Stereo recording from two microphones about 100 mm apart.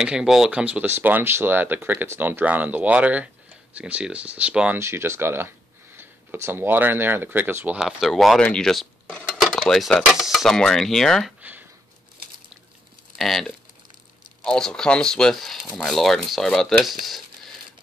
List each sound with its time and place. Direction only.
0.0 s speech: 5° right (ahead or behind)
4.7 s speech: 25° right (ahead or behind)
7.8 s speech: centre (ahead or behind)
8.5 s cutlery: 5° left (ahead or behind)
13.2 s speech: centre (ahead or behind)